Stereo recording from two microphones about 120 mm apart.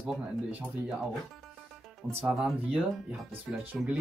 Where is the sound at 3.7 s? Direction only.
10° right (ahead or behind).